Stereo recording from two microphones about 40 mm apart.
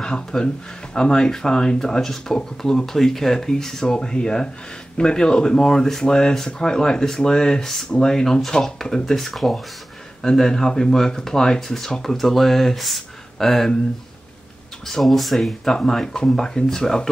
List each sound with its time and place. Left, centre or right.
0.0 s speech: centre
9.1 s speech: centre
14.9 s speech: centre